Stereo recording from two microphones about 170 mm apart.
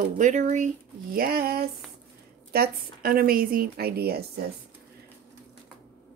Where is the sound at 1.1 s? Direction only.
60° right (ahead or behind).